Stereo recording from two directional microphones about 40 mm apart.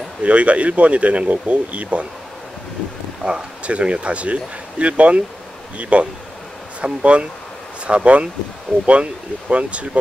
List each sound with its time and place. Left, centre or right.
0.2 s speech: right
3.3 s speech: right